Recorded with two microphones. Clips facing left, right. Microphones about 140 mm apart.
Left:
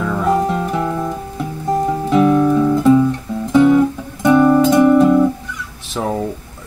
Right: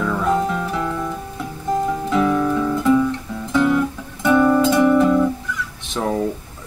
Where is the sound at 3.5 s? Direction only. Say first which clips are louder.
Left 6 dB; 20° left (ahead or behind).